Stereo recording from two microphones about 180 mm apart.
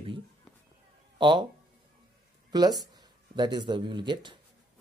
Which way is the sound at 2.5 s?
20° right (ahead or behind).